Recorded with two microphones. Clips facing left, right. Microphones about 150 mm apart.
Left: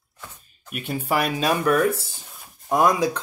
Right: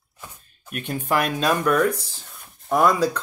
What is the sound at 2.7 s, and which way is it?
Speech, 15° left (ahead or behind).